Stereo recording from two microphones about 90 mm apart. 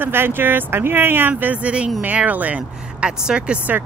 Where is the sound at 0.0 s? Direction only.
25° right (ahead or behind).